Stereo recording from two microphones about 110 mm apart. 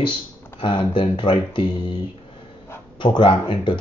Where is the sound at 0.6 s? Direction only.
50° left (ahead or behind).